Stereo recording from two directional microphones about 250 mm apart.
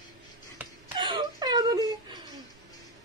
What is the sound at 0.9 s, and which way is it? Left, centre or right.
Whimper, centre.